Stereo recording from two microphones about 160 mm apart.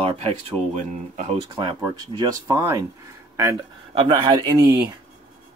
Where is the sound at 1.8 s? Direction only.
20° right (ahead or behind).